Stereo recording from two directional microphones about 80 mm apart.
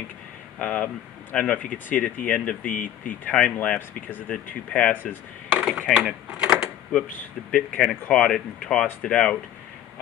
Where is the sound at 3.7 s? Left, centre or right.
Left.